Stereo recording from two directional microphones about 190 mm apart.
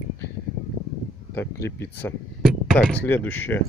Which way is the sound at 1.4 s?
15° left (ahead or behind).